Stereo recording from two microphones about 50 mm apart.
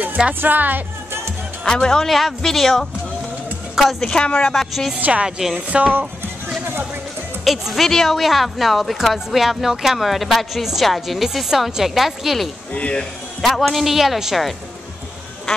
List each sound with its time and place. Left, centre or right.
0.3 s speech: right
1.6 s speech: centre
4.6 s speech: centre
4.9 s speech: right
7.4 s speech: centre
12.7 s speech: left
13.4 s speech: centre